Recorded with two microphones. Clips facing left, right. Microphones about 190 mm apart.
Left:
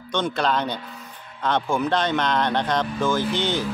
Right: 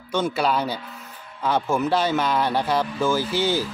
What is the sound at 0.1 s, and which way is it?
Speech, 10° right (ahead or behind).